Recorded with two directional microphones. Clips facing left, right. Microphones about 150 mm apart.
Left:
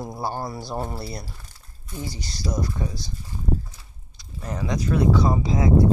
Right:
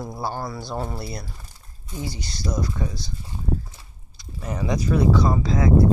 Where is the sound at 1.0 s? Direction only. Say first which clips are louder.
Right 1 dB; 35° left (ahead or behind).